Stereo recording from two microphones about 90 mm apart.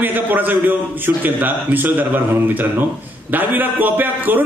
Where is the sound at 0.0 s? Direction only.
20° right (ahead or behind).